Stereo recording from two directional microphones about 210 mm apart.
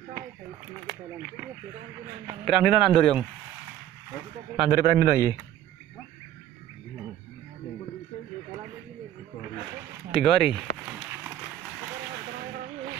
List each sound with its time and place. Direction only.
2.4 s speech: centre (ahead or behind)
4.6 s a man's voice: 45° right (ahead or behind)
10.2 s speech: centre (ahead or behind)